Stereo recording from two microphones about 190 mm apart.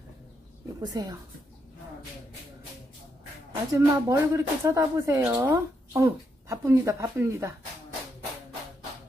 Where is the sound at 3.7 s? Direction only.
15° right (ahead or behind).